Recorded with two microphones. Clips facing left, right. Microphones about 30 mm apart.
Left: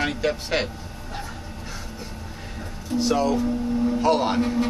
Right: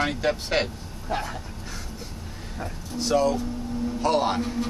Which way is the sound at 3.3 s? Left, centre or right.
Left.